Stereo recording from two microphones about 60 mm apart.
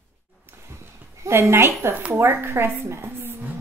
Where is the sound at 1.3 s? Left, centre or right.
Right.